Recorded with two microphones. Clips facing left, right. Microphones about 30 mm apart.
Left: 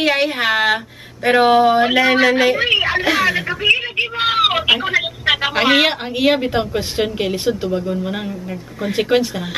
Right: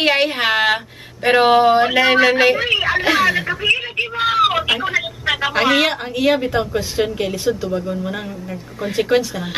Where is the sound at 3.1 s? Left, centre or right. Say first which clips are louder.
Right 1 dB; centre; by 5.5 s left.